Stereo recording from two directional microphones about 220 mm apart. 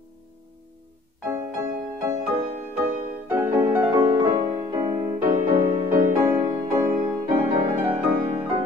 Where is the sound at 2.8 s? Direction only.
10° right (ahead or behind).